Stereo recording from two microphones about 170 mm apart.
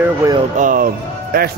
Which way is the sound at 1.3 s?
60° right (ahead or behind).